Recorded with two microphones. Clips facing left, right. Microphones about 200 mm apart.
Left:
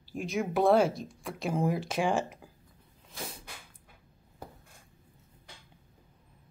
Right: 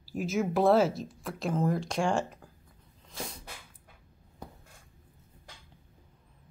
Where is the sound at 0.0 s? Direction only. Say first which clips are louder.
Right 2 dB; 5° right (ahead or behind).